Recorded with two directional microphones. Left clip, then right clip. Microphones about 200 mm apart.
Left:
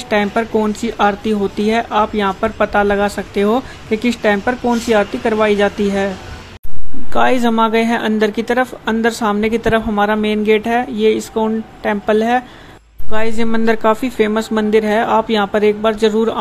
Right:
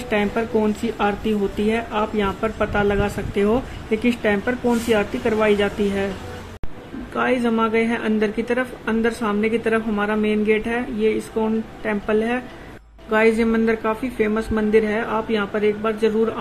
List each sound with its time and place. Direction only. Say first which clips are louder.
0.1 s speech: left 5 dB; 25° left (ahead or behind)
7.2 s speech: left 7 dB; 30° left (ahead or behind)